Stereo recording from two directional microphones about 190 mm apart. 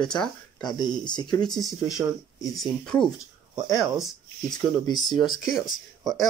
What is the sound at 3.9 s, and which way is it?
Speech, centre (ahead or behind).